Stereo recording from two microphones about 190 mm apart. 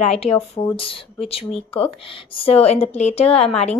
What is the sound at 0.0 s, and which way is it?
A woman's voice, 35° left (ahead or behind).